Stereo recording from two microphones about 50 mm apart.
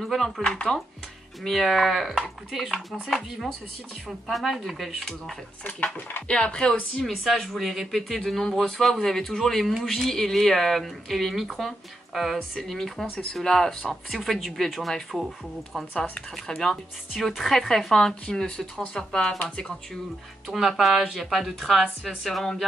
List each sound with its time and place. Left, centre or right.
0.0 s speech: centre
4.3 s speech: centre
6.2 s speech: centre
7.2 s speech: centre
12.4 s speech: centre
16.4 s speech: centre
20.4 s speech: centre